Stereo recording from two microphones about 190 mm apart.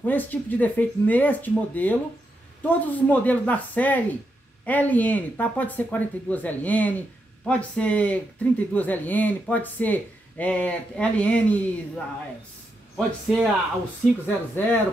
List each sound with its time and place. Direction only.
0.0 s speech: 10° left (ahead or behind)
12.9 s speech: centre (ahead or behind)